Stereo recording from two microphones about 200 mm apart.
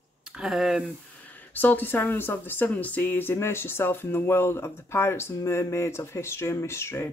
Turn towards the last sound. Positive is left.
turn(degrees=15)  # may be behind; listen again after turning